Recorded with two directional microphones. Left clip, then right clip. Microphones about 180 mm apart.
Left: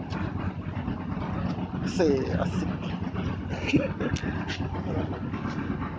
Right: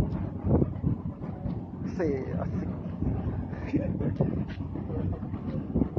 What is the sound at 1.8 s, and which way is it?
Dog, 35° left (ahead or behind).